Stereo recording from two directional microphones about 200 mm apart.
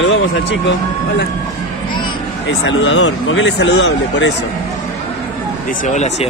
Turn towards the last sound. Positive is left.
turn(degrees=35)  # may be behind; listen again after turning